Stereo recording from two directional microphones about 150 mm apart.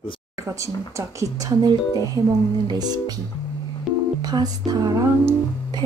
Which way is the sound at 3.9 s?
Centre (ahead or behind).